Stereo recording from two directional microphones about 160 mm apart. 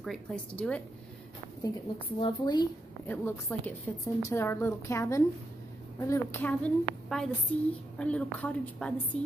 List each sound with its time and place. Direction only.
0.0 s a woman's voice: centre (ahead or behind)
2.1 s a child's voice: 30° left (ahead or behind)
3.1 s a woman's voice: 15° left (ahead or behind)
6.6 s a woman's voice: 5° left (ahead or behind)